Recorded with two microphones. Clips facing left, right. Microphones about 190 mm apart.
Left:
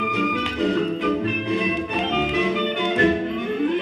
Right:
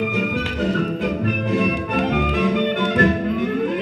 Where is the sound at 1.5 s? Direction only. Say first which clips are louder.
Right 4 dB; 45° right (ahead or behind).